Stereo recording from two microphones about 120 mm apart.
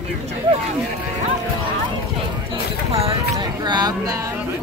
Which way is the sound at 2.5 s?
55° right (ahead or behind).